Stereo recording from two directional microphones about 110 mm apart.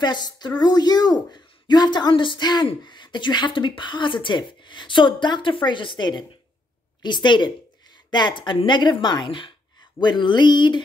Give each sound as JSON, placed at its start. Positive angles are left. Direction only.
{"t": 0.0, "sound": "a woman's voice", "side_deg": 40}